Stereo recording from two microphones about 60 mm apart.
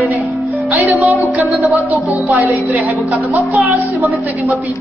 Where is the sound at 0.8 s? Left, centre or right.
Right.